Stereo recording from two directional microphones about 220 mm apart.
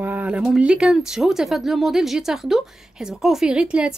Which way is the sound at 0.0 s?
5° right (ahead or behind).